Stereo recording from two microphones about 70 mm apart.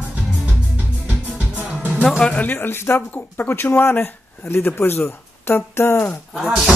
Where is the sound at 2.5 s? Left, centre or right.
Left.